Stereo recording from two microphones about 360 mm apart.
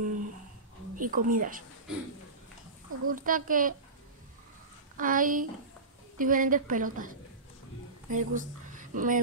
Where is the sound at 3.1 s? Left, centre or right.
Right.